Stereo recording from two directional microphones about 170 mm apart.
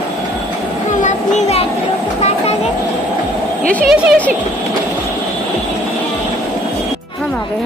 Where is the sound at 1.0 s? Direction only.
45° left (ahead or behind).